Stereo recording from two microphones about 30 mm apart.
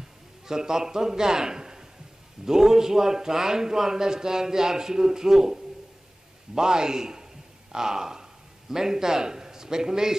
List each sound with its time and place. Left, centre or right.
0.5 s a man's voice: right